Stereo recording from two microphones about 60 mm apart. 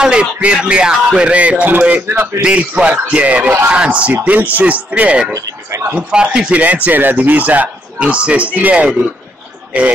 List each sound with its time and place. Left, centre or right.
0.0 s speech: centre
5.3 s speech: right
5.9 s speech: centre